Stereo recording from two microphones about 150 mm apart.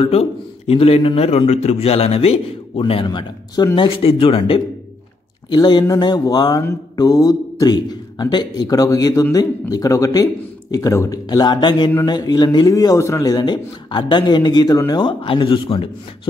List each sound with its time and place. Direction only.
0.0 s a man's voice: 40° left (ahead or behind)
5.5 s mantra: 30° left (ahead or behind)
14.9 s a man's voice: 30° left (ahead or behind)